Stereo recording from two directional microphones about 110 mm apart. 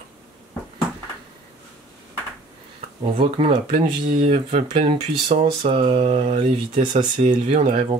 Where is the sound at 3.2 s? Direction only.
55° right (ahead or behind); by 7.6 s 90° right.